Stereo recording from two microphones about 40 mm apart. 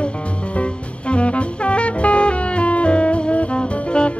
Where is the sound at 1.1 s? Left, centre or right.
Left.